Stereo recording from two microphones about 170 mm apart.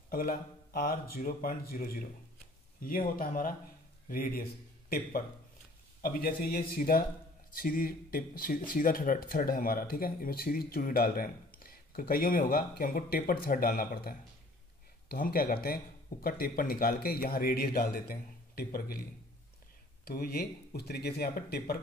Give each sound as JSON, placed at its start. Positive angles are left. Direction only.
{"t": 0.1, "sound": "a man's voice", "side_deg": 55}
{"t": 20.1, "sound": "speech", "side_deg": 65}